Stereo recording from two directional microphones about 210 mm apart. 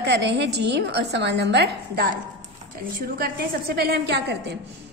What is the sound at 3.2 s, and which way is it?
A woman's voice, 45° right (ahead or behind).